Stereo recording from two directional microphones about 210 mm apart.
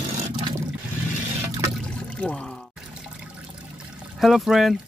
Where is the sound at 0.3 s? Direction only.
20° right (ahead or behind).